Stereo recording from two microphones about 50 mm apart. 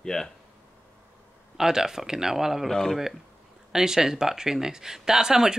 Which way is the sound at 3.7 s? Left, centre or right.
Centre.